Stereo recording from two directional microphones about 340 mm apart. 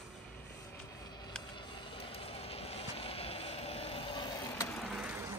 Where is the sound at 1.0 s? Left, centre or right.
Centre.